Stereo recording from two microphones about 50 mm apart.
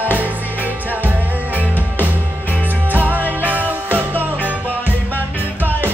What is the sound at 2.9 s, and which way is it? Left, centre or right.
Music, right.